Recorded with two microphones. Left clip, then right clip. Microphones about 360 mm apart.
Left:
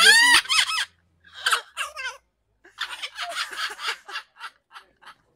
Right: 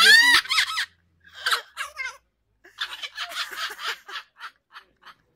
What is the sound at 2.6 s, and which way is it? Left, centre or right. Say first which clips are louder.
Fowl: even; centre.